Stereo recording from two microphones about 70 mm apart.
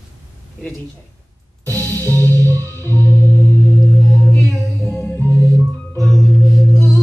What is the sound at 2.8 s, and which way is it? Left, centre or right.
Music, left.